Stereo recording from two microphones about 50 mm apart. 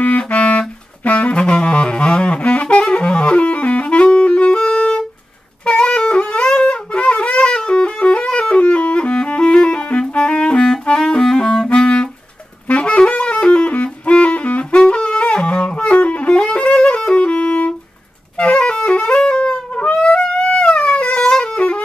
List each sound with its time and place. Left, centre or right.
0.2 s saxophone: left
5.7 s wind instrument: centre
7.4 s music: centre
12.6 s saxophone: left
14.0 s music: left
14.9 s wind instrument: centre
18.4 s music: left
21.5 s music: left